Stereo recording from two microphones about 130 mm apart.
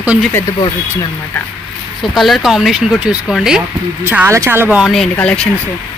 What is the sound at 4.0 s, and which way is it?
Speech, 15° right (ahead or behind).